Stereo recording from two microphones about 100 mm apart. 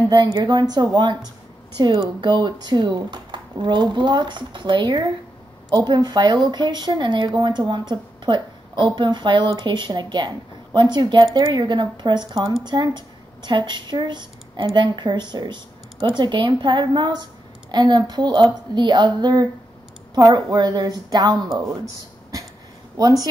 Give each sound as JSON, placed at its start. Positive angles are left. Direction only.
{"t": 0.1, "sound": "speech", "side_deg": -45}
{"t": 20.2, "sound": "speech", "side_deg": -30}
{"t": 22.9, "sound": "speech", "side_deg": -40}